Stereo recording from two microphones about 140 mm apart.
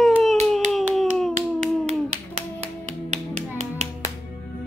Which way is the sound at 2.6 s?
60° right (ahead or behind).